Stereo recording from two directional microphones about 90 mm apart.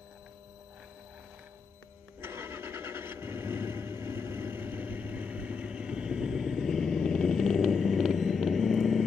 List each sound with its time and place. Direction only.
2.2 s vehicle: 25° right (ahead or behind); by 9.0 s centre (ahead or behind)